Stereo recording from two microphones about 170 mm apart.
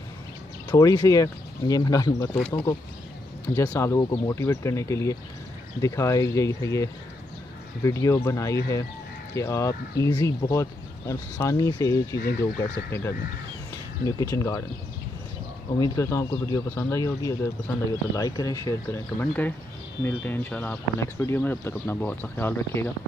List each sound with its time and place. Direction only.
0.7 s speech: 20° left (ahead or behind)
12.2 s speech: 70° left (ahead or behind)
14.0 s speech: 20° left (ahead or behind)
15.8 s speech: 15° left (ahead or behind)